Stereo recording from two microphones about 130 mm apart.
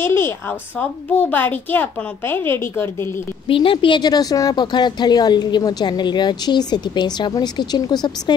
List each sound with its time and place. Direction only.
0.0 s a child's voice: 20° left (ahead or behind)
3.4 s a woman's voice: 40° left (ahead or behind)